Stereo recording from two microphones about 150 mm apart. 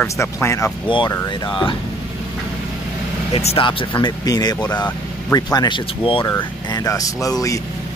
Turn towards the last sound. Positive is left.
turn(degrees=25)  # may be behind; listen again after turning